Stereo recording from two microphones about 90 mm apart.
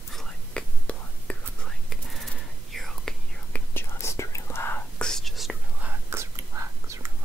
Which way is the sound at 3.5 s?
25° left (ahead or behind).